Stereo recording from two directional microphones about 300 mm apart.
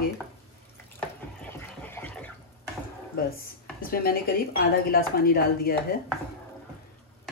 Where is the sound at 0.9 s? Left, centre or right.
Centre.